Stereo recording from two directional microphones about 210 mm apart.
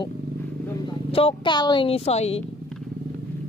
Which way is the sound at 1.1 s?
25° left (ahead or behind).